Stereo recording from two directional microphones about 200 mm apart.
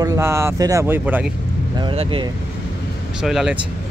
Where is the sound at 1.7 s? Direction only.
25° right (ahead or behind).